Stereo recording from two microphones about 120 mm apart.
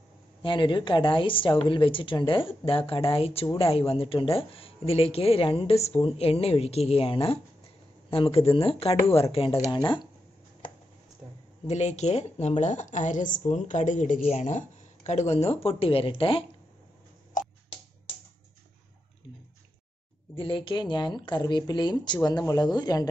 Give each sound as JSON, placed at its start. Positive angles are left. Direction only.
{"t": 0.4, "sound": "speech", "side_deg": 45}
{"t": 11.6, "sound": "speech", "side_deg": 65}
{"t": 17.4, "sound": "finger snapping", "side_deg": 90}
{"t": 20.3, "sound": "speech", "side_deg": 45}